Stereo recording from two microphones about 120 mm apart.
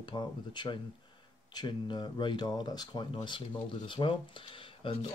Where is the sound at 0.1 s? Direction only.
40° left (ahead or behind).